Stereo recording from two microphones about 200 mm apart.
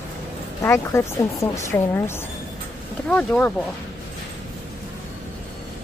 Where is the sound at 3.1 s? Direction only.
5° left (ahead or behind).